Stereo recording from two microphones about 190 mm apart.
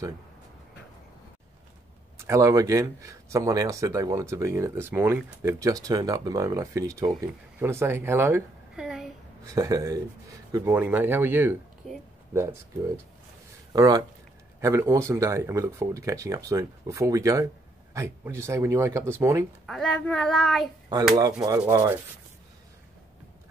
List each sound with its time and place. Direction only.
2.1 s a woman's voice: 15° right (ahead or behind)
9.5 s a child's voice: 20° right (ahead or behind); by 12.0 s centre (ahead or behind)
13.7 s speech: 20° right (ahead or behind)
19.6 s a child's voice: centre (ahead or behind)
21.5 s speech: 15° right (ahead or behind)